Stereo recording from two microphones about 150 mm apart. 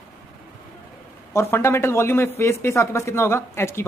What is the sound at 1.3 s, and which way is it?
A woman's voice, 15° left (ahead or behind).